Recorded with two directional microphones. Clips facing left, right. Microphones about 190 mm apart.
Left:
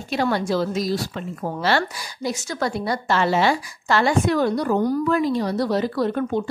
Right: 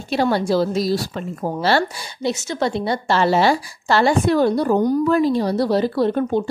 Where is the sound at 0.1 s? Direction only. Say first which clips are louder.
Right 4 dB; 30° right (ahead or behind).